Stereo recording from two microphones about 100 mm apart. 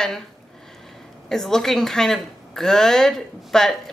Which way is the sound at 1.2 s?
5° left (ahead or behind).